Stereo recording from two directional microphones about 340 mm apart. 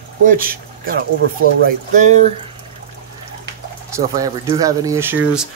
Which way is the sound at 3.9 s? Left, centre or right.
Centre.